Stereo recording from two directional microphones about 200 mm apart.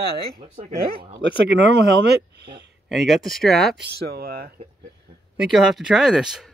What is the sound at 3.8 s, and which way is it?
Speech, 50° right (ahead or behind).